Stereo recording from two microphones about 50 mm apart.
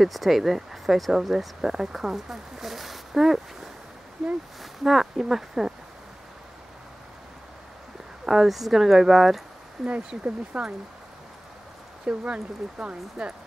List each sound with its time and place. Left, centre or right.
0.0 s speech: centre
1.3 s speech: centre
4.8 s speech: centre
8.3 s speech: centre
10.0 s speech: right
12.1 s speech: right